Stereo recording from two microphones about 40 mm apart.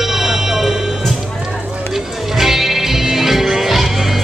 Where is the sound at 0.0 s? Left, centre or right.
Centre.